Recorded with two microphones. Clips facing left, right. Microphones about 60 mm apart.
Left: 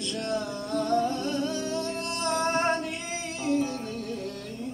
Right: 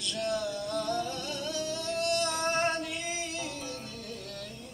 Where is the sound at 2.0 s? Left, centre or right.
Left.